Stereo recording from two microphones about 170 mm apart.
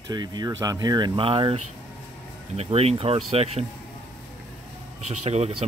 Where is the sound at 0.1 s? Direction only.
25° right (ahead or behind).